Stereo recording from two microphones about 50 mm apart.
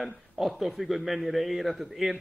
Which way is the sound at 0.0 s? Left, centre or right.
Centre.